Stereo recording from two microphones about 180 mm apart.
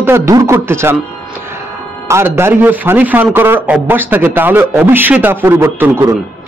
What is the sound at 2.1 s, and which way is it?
A man's voice, 15° right (ahead or behind).